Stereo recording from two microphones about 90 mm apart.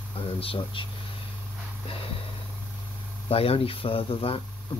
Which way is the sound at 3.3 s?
90° left.